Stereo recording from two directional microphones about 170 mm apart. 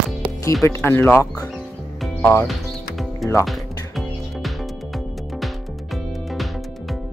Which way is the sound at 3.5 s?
Centre (ahead or behind).